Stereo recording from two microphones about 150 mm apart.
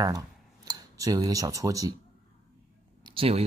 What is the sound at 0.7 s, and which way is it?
Speech, 25° right (ahead or behind).